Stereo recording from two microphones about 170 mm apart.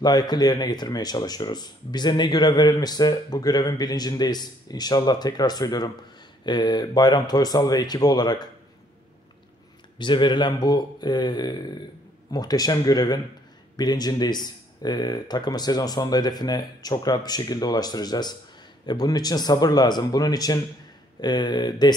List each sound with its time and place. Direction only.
0.0 s speech: 25° left (ahead or behind)
9.9 s speech: 25° left (ahead or behind)